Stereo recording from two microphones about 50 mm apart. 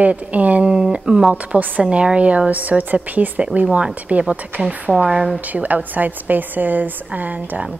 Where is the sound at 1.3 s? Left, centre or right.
Right.